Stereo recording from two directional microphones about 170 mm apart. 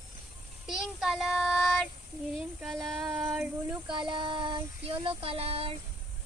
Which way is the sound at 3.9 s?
25° right (ahead or behind).